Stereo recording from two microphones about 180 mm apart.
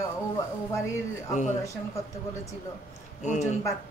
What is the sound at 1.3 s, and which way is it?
Speech, 40° left (ahead or behind).